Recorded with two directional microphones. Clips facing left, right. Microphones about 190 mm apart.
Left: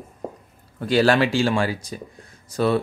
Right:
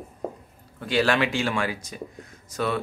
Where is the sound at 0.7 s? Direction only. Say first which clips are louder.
Left 5 dB; 40° left (ahead or behind).